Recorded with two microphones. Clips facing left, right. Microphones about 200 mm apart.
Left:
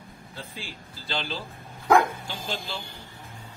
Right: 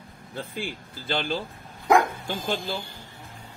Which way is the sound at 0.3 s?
55° right (ahead or behind).